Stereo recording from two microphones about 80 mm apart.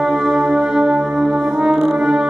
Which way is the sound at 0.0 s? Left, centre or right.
Centre.